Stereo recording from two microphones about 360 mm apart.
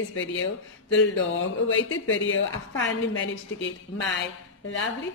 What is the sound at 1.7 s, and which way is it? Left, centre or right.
Speech, left.